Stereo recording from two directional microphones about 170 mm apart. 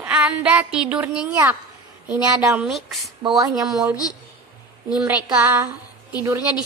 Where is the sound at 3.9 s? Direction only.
20° left (ahead or behind).